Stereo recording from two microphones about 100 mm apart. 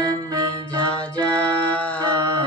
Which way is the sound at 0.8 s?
10° left (ahead or behind).